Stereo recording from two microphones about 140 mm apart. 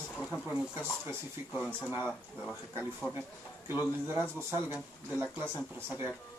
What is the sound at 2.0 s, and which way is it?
Speech, 10° left (ahead or behind).